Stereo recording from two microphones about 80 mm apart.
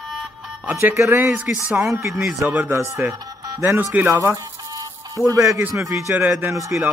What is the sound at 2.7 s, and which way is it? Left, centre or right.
Speech, right.